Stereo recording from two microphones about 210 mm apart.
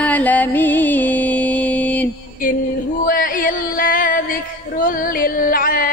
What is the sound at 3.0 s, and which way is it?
Music, 40° left (ahead or behind).